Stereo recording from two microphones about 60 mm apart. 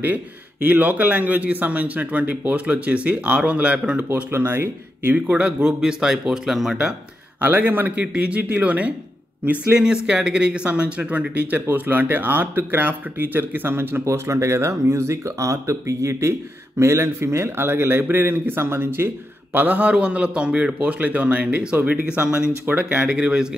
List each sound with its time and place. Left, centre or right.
0.0 s a man's voice: right
4.1 s speech: right
5.1 s speech: right; by 6.8 s centre
7.3 s a man's voice: right
10.0 s speech: centre; by 14.0 s right
14.0 s speech: right; by 23.5 s centre